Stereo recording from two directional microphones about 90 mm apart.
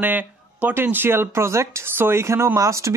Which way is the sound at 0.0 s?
20° right (ahead or behind).